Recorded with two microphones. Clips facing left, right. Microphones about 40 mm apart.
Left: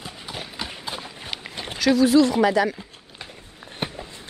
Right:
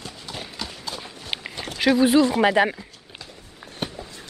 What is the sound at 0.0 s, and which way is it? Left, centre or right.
Clip-clop, centre.